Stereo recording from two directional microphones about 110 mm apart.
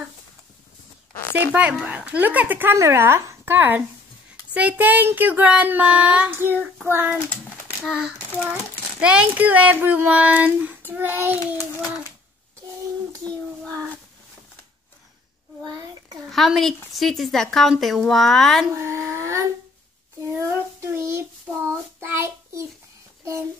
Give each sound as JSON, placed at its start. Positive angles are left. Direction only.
{"t": 1.5, "sound": "speech", "side_deg": -10}
{"t": 7.8, "sound": "speech", "side_deg": -5}
{"t": 16.3, "sound": "speech", "side_deg": 0}
{"t": 18.7, "sound": "a sound", "side_deg": -25}
{"t": 20.3, "sound": "child singing", "side_deg": -25}